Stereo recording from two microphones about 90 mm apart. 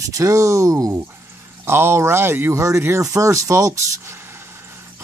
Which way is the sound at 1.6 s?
30° right (ahead or behind).